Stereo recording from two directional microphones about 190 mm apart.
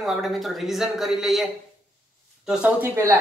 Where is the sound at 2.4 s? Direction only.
10° right (ahead or behind).